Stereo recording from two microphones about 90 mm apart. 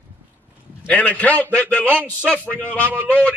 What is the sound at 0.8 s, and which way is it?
A man's voice, 15° left (ahead or behind).